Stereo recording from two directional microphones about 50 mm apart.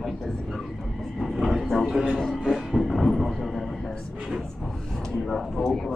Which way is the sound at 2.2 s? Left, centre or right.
Centre.